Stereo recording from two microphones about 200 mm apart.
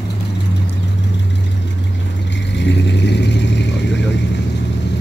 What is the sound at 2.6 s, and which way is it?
Vehicle, 60° left (ahead or behind).